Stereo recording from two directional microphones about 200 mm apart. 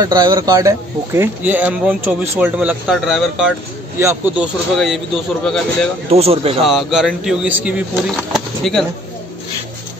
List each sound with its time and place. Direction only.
0.0 s speech: 20° right (ahead or behind)
4.7 s speech: centre (ahead or behind)
6.0 s speech: 30° right (ahead or behind)
6.6 s speech: centre (ahead or behind)